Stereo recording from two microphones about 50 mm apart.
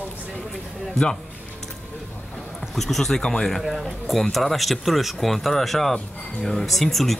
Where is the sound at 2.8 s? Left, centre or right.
Centre.